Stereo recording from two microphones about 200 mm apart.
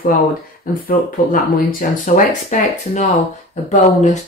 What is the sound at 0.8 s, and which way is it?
Speech, 45° left (ahead or behind).